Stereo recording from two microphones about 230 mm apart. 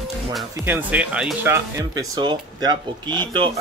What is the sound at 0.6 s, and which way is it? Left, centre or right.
Speech, centre.